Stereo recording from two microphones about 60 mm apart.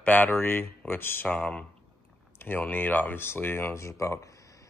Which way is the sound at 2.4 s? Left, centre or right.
Left.